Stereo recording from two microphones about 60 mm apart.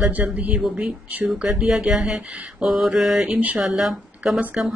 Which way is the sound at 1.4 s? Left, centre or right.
Centre.